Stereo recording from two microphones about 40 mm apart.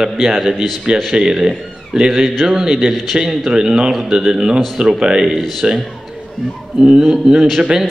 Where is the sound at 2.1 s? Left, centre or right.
Centre.